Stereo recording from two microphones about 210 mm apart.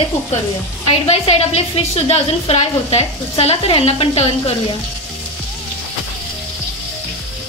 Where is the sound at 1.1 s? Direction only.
30° left (ahead or behind).